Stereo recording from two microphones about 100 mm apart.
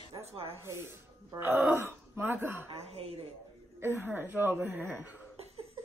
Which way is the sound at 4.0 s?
20° right (ahead or behind).